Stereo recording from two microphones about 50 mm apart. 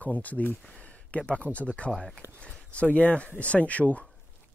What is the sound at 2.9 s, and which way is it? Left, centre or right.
Speech, left.